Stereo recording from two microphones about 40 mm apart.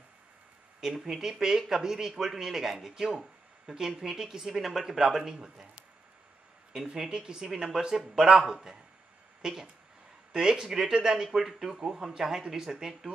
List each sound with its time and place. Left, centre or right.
0.7 s speech: centre
6.7 s speech: centre